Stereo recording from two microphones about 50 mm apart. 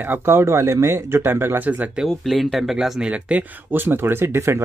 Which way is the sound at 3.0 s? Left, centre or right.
Right.